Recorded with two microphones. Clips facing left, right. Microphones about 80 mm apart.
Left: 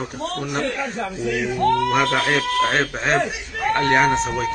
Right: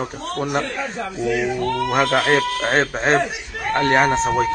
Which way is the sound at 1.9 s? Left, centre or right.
Right.